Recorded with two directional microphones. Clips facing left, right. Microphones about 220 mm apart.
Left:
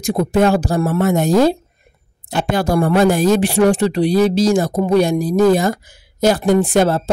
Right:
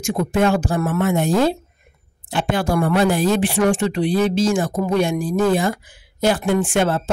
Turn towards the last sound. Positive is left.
turn(degrees=40)  # may be behind; listen again after turning